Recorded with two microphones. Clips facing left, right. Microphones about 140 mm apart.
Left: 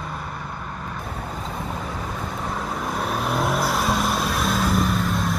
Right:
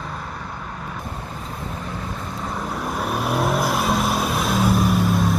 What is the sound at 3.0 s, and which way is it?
Vehicle, 5° right (ahead or behind).